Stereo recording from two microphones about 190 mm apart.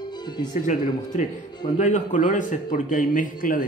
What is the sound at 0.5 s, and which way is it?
Speech, 45° left (ahead or behind).